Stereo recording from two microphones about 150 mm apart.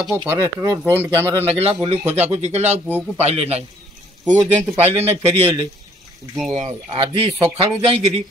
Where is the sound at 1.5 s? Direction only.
40° right (ahead or behind).